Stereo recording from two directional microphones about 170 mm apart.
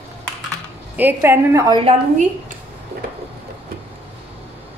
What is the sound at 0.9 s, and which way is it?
Speech, 10° right (ahead or behind).